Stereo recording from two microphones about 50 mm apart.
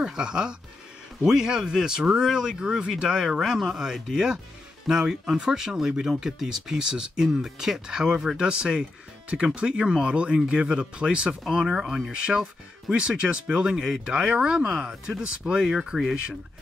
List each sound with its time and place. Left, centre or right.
0.0 s speech: centre